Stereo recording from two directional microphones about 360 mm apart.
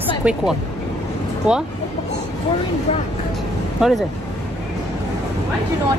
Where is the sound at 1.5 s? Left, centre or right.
Centre.